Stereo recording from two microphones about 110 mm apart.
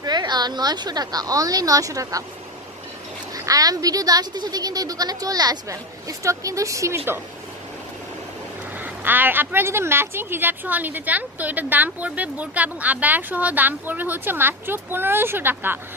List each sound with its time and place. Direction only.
0.0 s a woman's voice: 40° right (ahead or behind)
3.3 s speech: 30° right (ahead or behind)
8.7 s speech: 15° right (ahead or behind)